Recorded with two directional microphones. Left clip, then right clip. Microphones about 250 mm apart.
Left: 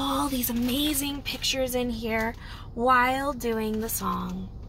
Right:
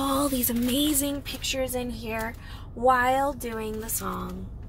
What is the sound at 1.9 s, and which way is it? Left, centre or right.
A woman's voice, centre.